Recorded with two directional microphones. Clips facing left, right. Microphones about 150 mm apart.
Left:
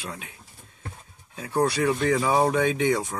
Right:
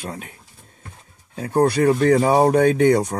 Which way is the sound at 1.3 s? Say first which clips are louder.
Right 6 dB; 50° right (ahead or behind).